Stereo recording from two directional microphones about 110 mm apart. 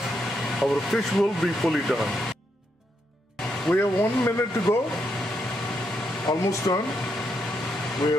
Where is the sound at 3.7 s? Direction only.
20° left (ahead or behind).